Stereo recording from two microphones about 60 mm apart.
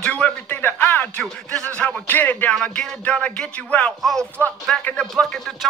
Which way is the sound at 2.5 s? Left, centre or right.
Centre.